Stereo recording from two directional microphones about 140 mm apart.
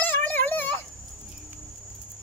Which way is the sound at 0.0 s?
10° left (ahead or behind).